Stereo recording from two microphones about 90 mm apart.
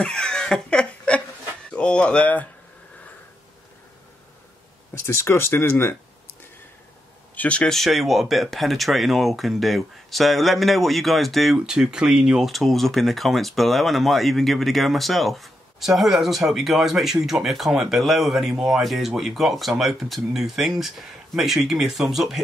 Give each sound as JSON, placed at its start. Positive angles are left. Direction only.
{"t": 0.0, "sound": "laughter", "side_deg": 10}
{"t": 1.7, "sound": "speech", "side_deg": 10}
{"t": 5.0, "sound": "speech", "side_deg": 30}
{"t": 7.3, "sound": "speech", "side_deg": 15}